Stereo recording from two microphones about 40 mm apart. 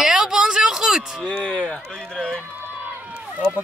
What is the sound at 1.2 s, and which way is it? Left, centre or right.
Speech, left.